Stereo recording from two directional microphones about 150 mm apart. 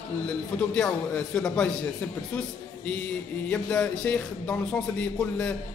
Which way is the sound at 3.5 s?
5° left (ahead or behind).